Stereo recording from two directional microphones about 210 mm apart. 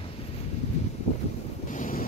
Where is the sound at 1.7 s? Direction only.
40° left (ahead or behind).